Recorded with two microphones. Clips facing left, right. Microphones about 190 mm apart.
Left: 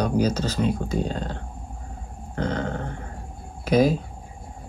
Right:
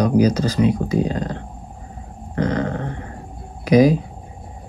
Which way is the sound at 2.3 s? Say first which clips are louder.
Right 5 dB; centre (ahead or behind).